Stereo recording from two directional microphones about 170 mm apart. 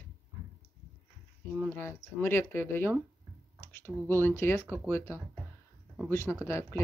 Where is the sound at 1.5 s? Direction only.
10° left (ahead or behind).